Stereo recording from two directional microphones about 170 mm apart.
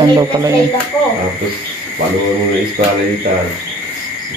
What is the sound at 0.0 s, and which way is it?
Speech, 25° right (ahead or behind).